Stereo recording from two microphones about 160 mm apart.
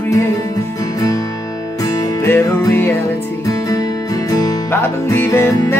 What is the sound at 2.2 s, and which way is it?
Music, 15° left (ahead or behind).